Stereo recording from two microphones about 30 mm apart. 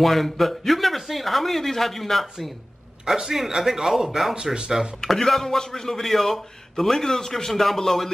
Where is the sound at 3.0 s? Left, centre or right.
Centre.